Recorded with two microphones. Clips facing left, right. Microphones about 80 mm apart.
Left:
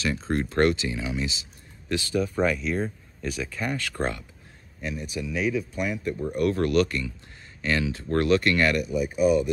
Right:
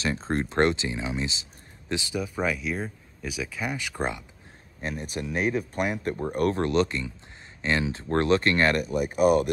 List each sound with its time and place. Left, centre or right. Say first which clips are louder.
0.0 s speech: left 1 dB; right
2.1 s speech: left 5 dB; centre
4.7 s speech: even; right
6.6 s speech: left 1 dB; right